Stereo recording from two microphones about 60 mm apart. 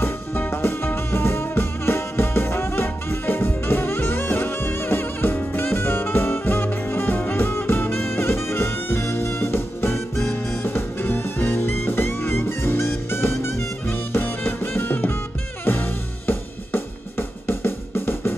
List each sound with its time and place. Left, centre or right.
0.0 s music: left
15.6 s drum kit: left